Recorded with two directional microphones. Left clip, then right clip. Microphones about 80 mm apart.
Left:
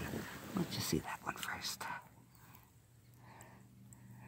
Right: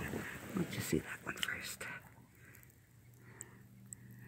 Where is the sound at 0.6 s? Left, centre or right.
Centre.